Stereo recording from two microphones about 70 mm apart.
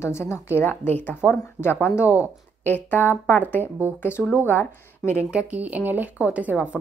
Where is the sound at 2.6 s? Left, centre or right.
Left.